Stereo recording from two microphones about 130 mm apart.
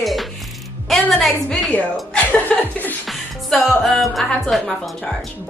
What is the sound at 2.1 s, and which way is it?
Chuckle, 10° left (ahead or behind).